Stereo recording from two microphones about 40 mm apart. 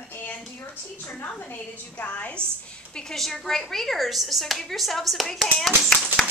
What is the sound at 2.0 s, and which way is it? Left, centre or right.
Speech, left.